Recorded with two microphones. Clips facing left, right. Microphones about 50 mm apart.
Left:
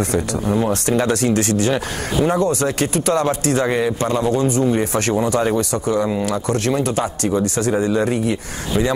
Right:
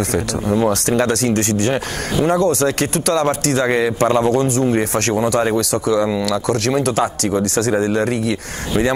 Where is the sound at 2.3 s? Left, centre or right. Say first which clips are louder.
Right 2 dB; right.